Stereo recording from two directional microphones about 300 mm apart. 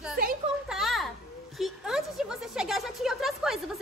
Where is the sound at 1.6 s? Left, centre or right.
Centre.